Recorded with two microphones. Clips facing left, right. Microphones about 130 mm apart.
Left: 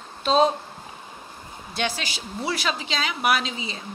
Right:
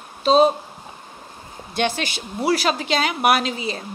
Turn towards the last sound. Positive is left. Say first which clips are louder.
# right 5 dB
turn(degrees=-60)  # may be behind; listen again after turning